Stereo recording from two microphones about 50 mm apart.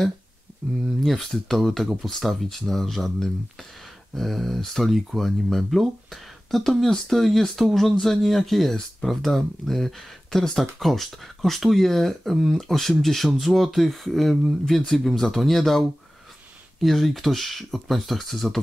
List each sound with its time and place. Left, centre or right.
0.6 s speech: centre
1.0 s speech: centre
16.8 s speech: centre